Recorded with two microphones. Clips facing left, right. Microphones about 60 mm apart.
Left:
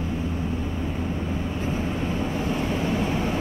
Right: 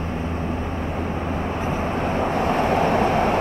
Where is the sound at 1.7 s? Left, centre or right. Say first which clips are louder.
Right 4 dB; right.